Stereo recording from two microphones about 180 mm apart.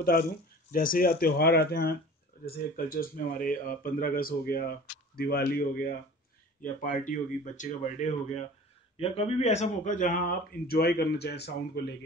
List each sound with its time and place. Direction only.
0.0 s speech: 55° left (ahead or behind)